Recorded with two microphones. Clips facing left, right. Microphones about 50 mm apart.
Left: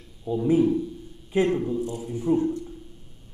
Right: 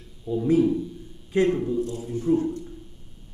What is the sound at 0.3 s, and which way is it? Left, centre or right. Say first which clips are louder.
A man's voice: even; centre.